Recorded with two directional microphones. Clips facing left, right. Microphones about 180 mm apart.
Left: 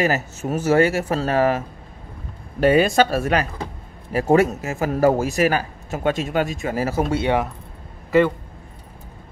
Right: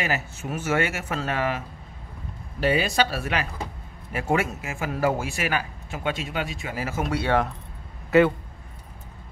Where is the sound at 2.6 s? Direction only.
50° left (ahead or behind); by 7.3 s 25° left (ahead or behind).